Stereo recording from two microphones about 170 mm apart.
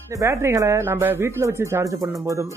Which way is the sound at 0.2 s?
15° right (ahead or behind).